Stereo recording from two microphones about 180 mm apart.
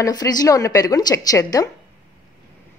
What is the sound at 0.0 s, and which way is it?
A woman's voice, 20° left (ahead or behind).